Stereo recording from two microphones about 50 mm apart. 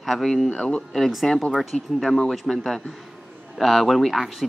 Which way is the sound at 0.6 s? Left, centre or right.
Centre.